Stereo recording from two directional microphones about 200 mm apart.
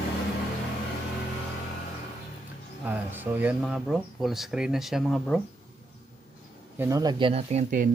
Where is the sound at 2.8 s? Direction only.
10° right (ahead or behind).